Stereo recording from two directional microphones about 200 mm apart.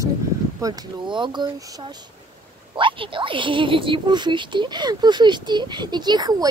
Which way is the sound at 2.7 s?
25° right (ahead or behind).